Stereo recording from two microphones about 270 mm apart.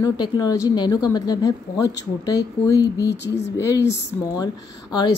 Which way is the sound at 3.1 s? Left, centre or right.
Left.